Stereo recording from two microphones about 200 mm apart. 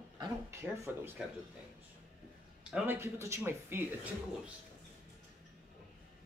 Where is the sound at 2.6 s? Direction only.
10° right (ahead or behind).